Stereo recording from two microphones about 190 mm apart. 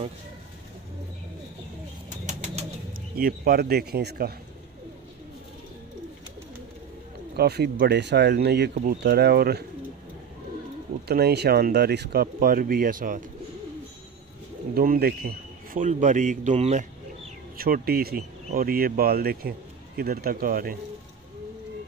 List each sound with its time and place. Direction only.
2.2 s bird: 40° right (ahead or behind)
3.2 s speech: 50° right (ahead or behind)
7.3 s speech: 60° right (ahead or behind)
11.1 s speech: 55° right (ahead or behind)
14.7 s a man's voice: 50° right (ahead or behind)
17.6 s speech: 50° right (ahead or behind)